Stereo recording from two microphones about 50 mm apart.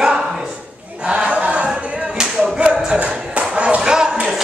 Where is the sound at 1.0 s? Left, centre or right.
Centre.